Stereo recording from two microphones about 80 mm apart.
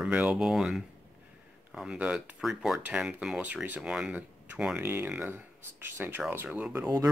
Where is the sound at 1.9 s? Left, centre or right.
Centre.